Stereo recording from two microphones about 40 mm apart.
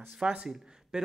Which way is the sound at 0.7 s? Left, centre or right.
Centre.